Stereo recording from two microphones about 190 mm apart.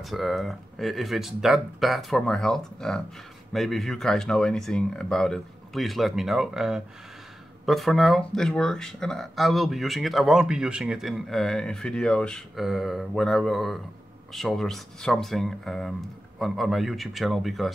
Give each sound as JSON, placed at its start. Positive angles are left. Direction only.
{"t": 0.1, "sound": "speech", "side_deg": 0}